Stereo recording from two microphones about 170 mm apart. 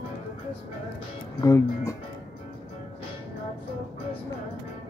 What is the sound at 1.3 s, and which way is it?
Music, 20° left (ahead or behind).